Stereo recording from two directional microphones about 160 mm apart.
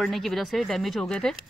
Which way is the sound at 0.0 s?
Centre (ahead or behind).